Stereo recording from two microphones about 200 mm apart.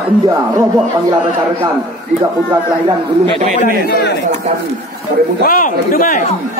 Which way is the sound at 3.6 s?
55° left (ahead or behind).